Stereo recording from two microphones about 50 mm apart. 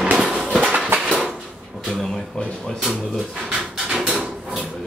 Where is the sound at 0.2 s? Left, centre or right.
Centre.